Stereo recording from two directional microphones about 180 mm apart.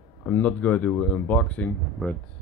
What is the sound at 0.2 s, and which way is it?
Speech, 5° left (ahead or behind).